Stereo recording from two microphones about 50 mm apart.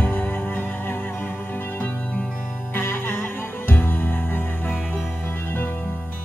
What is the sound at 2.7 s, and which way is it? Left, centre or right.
Music, left.